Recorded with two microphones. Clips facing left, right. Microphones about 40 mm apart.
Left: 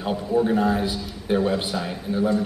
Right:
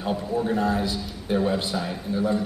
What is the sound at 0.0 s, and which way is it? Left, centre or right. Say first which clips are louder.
A man's voice: left 4 dB; centre.